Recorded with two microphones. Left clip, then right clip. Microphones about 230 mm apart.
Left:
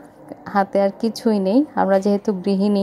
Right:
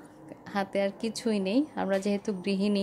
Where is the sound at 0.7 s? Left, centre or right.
Centre.